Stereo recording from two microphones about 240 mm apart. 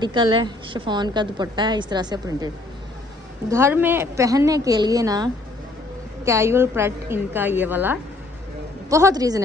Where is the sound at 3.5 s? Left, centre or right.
Centre.